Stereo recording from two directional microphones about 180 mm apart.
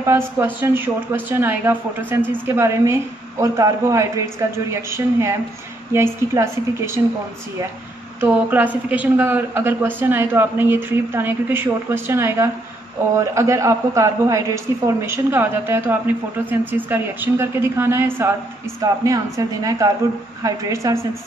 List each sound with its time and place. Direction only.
0.0 s a man's voice: 15° right (ahead or behind)
8.2 s a man's voice: 10° right (ahead or behind)